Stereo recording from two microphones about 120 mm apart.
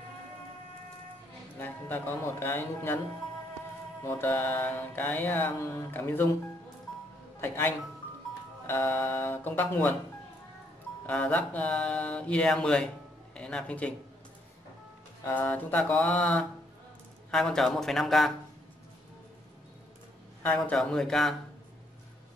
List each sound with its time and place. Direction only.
1.6 s speech: 15° left (ahead or behind)
4.0 s speech: 15° left (ahead or behind)
7.3 s speech: 20° left (ahead or behind)
11.1 s speech: 10° left (ahead or behind)
15.2 s speech: 15° left (ahead or behind)
20.4 s speech: 10° left (ahead or behind)